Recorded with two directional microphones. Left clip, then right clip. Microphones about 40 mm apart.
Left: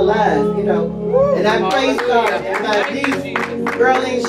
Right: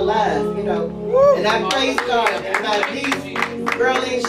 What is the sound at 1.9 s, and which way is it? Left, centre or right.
Speech, left.